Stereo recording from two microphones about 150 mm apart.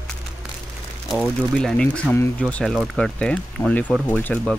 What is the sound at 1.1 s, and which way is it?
Speech, centre (ahead or behind).